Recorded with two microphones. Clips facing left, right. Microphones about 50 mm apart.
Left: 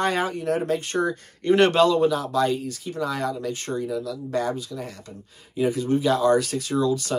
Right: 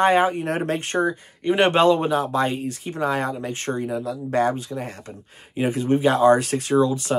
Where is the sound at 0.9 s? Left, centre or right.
Centre.